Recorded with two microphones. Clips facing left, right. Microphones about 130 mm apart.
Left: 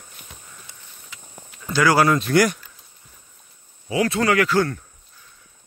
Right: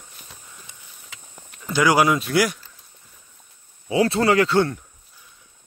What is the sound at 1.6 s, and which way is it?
Speech, 20° right (ahead or behind).